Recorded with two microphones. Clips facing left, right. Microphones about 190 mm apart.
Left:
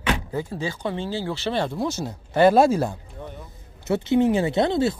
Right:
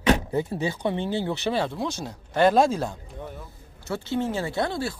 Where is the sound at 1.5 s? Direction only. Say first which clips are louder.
Left 2 dB; centre (ahead or behind).